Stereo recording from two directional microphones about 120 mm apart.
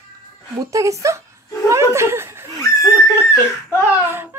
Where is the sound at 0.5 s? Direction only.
25° right (ahead or behind).